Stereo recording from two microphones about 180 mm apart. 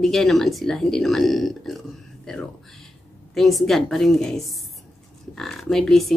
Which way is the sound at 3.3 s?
Centre (ahead or behind).